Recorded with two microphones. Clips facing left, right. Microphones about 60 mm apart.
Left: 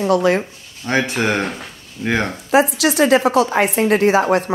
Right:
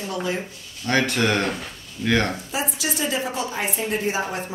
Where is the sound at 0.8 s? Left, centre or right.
Centre.